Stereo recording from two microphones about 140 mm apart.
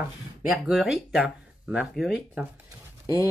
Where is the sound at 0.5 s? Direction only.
Centre (ahead or behind).